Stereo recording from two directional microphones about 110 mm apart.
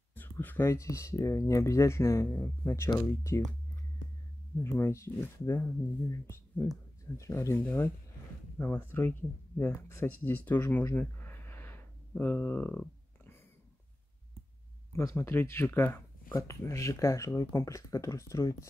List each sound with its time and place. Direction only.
0.1 s speech: 15° left (ahead or behind)
4.6 s speech: 25° left (ahead or behind)
10.8 s a sound: 20° left (ahead or behind)
15.0 s speech: 25° left (ahead or behind)